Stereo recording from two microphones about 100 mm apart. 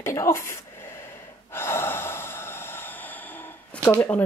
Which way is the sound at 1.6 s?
25° left (ahead or behind).